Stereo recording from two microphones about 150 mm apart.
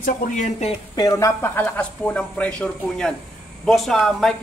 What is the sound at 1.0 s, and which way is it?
A woman's voice, 15° left (ahead or behind).